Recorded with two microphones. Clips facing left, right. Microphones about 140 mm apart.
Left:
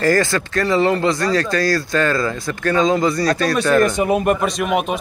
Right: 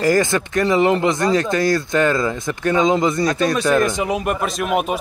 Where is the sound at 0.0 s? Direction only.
15° right (ahead or behind).